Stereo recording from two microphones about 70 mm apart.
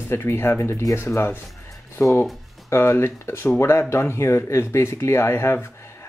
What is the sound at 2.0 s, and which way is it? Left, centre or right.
Speech, left.